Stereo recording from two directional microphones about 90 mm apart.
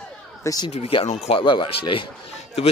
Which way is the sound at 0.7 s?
90° left.